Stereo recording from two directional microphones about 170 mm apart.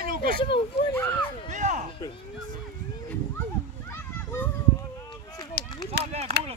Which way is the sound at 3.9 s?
15° left (ahead or behind).